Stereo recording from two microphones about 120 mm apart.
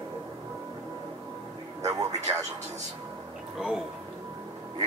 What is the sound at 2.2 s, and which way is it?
Speech, 30° right (ahead or behind).